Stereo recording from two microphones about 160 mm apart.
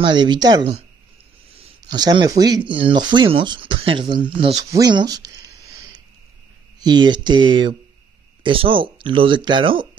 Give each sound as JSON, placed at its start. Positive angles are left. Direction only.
{"t": 0.0, "sound": "speech", "side_deg": -30}
{"t": 1.8, "sound": "speech", "side_deg": -25}
{"t": 4.6, "sound": "a sound", "side_deg": -20}
{"t": 6.8, "sound": "speech", "side_deg": -25}